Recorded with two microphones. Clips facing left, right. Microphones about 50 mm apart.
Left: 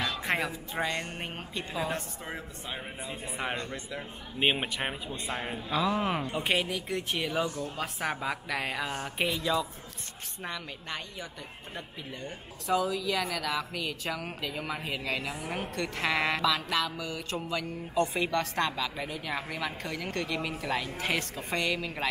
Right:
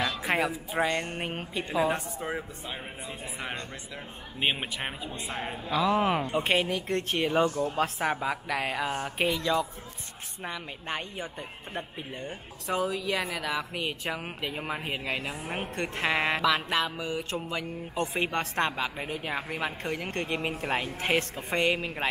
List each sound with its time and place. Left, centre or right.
0.0 s speech: centre
3.5 s speech: left
4.4 s speech: centre
5.8 s speech: right
6.3 s speech: centre
7.2 s speech: right
7.8 s speech: centre
11.7 s speech: right
13.3 s speech: centre
13.7 s speech: right